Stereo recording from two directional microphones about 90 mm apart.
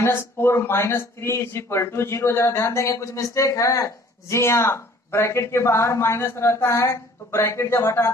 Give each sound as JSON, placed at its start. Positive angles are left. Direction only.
{"t": 0.0, "sound": "speech", "side_deg": 25}